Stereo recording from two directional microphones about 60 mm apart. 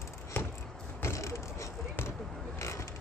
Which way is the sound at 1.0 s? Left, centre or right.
Left.